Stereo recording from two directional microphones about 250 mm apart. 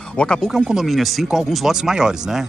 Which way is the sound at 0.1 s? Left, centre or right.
Centre.